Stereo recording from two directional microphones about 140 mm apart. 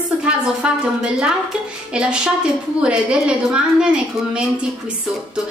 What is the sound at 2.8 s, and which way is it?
A woman's voice, 5° right (ahead or behind).